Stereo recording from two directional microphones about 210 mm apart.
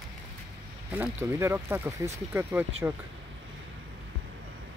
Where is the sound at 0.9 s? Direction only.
10° right (ahead or behind).